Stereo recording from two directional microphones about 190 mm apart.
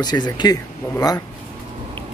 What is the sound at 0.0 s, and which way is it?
Speech, 20° left (ahead or behind).